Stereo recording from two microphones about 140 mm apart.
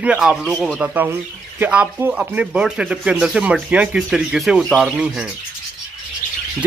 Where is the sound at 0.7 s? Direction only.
5° right (ahead or behind).